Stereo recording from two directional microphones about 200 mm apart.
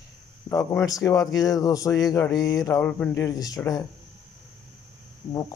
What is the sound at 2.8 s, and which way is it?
Speech, 5° left (ahead or behind).